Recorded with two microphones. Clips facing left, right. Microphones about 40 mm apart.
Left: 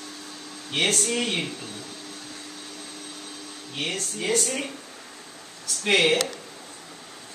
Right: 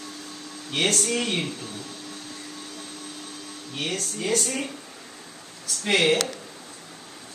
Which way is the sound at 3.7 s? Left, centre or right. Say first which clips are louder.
Even; centre.